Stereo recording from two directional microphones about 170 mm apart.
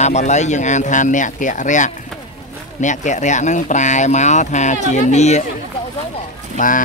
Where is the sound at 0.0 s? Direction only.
45° left (ahead or behind).